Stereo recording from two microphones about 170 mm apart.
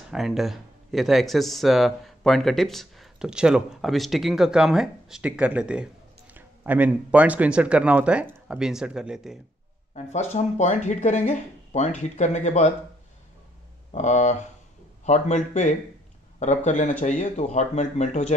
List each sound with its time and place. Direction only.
0.1 s speech: centre (ahead or behind)
10.1 s speech: 40° left (ahead or behind)
13.9 s speech: 45° left (ahead or behind)